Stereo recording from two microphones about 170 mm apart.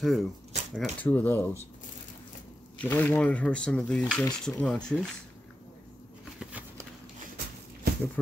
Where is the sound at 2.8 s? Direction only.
10° left (ahead or behind).